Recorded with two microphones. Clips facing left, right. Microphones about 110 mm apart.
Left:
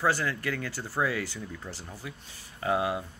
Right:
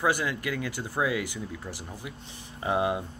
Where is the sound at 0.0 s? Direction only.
15° right (ahead or behind).